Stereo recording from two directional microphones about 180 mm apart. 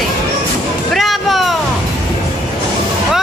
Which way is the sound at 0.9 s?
Centre (ahead or behind).